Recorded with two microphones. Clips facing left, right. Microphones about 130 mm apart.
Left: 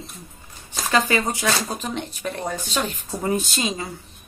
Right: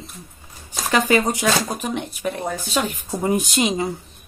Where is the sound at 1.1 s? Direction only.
20° right (ahead or behind).